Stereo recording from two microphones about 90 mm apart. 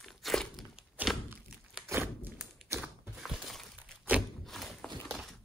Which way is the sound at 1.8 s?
25° right (ahead or behind).